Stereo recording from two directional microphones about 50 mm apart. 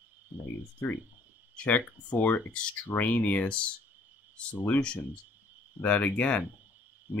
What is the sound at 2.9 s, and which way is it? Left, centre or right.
Speech, left.